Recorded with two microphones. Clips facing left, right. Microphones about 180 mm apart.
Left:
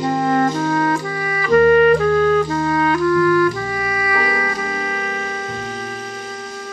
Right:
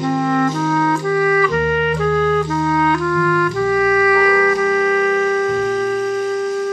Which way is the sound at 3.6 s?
30° left (ahead or behind).